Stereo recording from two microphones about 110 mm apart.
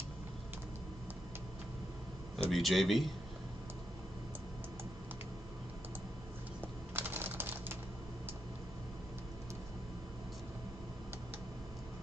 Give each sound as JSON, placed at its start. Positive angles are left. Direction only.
{"t": 2.5, "sound": "a man's voice", "side_deg": 0}
{"t": 6.9, "sound": "typing", "side_deg": -20}